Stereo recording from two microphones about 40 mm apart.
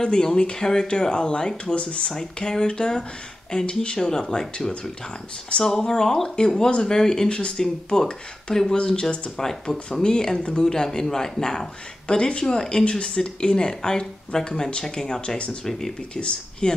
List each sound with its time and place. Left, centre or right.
0.0 s speech: centre
2.1 s speech: centre
7.2 s speech: left
7.5 s speech: centre
8.7 s speech: left
9.4 s speech: centre